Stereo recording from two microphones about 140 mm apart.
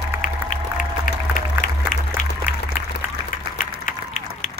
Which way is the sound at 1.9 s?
65° left (ahead or behind).